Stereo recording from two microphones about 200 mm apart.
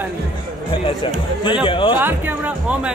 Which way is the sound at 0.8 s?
25° left (ahead or behind).